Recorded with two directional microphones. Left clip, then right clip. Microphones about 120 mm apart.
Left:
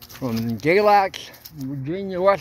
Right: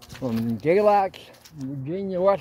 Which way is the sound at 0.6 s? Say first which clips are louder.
Left 3 dB; centre (ahead or behind).